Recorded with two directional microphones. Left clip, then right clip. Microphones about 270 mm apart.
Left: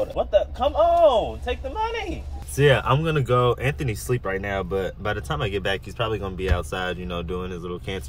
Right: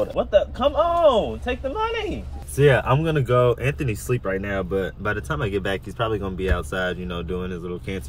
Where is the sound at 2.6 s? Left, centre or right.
Centre.